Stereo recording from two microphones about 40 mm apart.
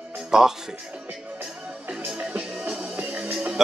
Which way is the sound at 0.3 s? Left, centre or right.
Centre.